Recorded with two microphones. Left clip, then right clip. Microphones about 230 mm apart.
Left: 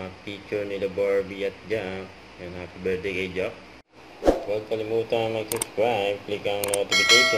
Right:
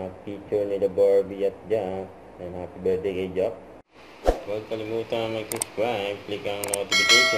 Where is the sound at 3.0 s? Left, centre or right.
Centre.